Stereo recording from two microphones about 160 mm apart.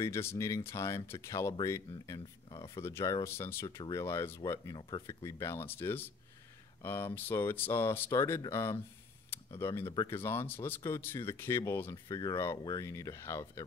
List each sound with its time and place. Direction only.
0.0 s speech: 15° left (ahead or behind)
5.0 s speech: 15° left (ahead or behind)